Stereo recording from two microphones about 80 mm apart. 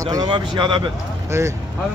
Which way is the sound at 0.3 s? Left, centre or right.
Right.